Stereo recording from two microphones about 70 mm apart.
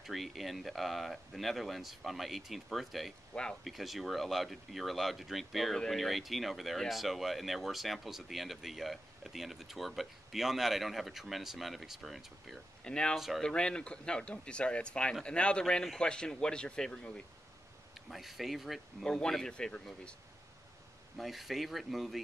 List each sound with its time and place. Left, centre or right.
0.0 s speech: centre
12.8 s speech: centre
18.1 s speech: centre
19.0 s speech: centre
21.2 s speech: centre